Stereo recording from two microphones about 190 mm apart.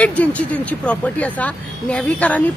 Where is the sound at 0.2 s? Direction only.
10° left (ahead or behind).